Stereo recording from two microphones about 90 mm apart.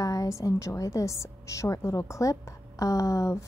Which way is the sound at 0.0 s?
40° left (ahead or behind).